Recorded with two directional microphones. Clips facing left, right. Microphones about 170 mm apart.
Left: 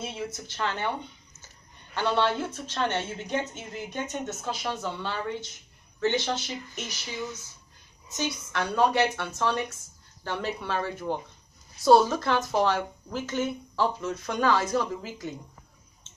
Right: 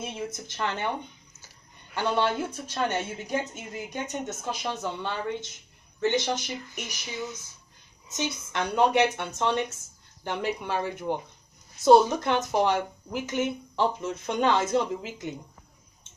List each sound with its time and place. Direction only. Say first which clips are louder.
0.0 s speech: even; 15° right (ahead or behind)